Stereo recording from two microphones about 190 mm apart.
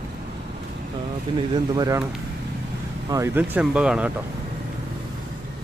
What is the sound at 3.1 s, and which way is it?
Speech, 15° right (ahead or behind).